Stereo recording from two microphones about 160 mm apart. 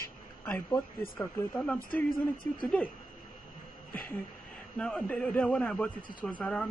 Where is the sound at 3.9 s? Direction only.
10° left (ahead or behind).